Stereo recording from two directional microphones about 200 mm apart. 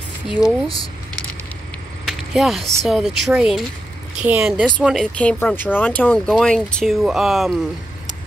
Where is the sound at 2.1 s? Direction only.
Centre (ahead or behind).